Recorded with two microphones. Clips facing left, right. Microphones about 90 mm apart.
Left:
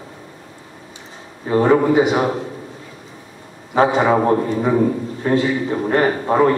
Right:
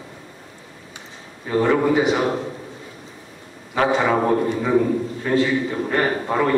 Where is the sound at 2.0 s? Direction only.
10° left (ahead or behind).